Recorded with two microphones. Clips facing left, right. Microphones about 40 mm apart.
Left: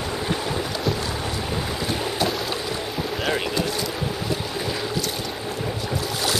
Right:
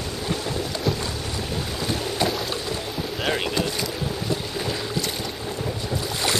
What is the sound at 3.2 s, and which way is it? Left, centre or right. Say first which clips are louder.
Boat: right 1 dB; centre.